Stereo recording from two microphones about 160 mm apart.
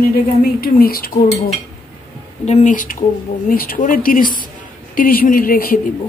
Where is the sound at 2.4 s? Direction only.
45° left (ahead or behind).